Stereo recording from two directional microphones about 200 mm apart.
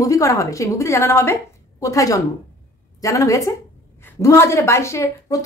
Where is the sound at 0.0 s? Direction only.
15° left (ahead or behind).